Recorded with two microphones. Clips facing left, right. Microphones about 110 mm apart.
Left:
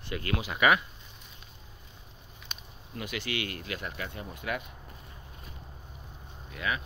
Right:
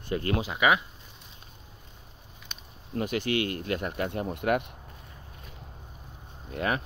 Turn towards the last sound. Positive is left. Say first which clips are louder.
# right 5 dB
turn(degrees=-50)  # may be behind; listen again after turning